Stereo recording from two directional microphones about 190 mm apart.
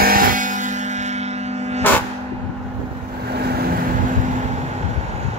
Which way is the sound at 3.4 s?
55° right (ahead or behind).